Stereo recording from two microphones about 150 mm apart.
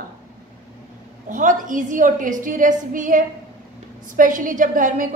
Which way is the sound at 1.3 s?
60° right (ahead or behind).